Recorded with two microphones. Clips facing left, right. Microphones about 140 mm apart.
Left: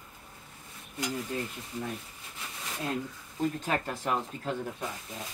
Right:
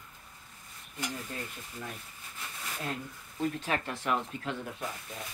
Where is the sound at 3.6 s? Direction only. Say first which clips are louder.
Left 2 dB; 40° left (ahead or behind).